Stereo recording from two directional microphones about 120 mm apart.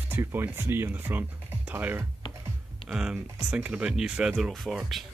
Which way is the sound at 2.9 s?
5° right (ahead or behind).